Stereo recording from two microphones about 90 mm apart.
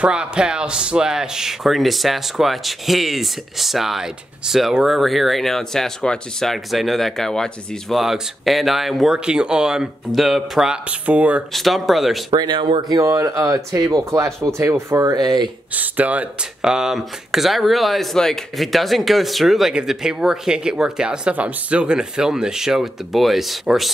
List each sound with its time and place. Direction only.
0.0 s speech: 10° right (ahead or behind)
11.5 s speech: centre (ahead or behind)
12.4 s speech: 60° right (ahead or behind)
12.8 s speech: 40° right (ahead or behind)
15.7 s speech: 15° right (ahead or behind); by 23.9 s centre (ahead or behind)